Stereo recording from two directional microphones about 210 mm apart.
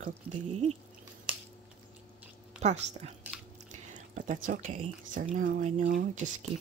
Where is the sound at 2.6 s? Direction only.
35° right (ahead or behind).